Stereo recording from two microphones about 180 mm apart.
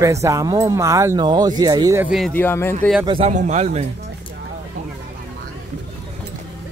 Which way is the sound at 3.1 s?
35° right (ahead or behind).